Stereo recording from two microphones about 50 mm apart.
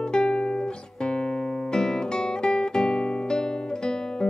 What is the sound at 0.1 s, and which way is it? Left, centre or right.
Music, centre.